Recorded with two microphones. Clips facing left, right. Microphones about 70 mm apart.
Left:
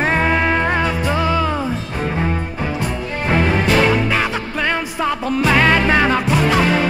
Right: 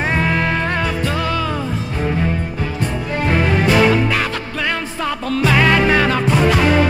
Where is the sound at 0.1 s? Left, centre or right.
Centre.